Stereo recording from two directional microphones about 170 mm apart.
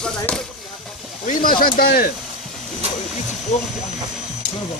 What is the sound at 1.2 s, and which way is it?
Speech, 55° left (ahead or behind).